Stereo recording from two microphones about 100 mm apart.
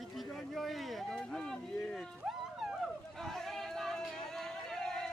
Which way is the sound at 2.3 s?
5° right (ahead or behind).